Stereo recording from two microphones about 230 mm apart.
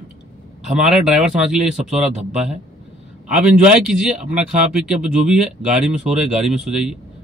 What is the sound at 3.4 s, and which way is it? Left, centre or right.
Speech, centre.